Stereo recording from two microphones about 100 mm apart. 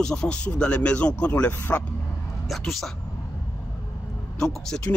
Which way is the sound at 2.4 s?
Centre (ahead or behind).